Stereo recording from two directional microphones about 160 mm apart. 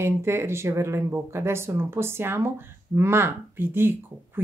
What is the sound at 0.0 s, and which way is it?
Speech, 15° right (ahead or behind).